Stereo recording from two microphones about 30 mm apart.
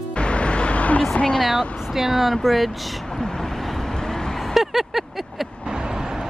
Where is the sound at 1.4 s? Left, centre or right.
Centre.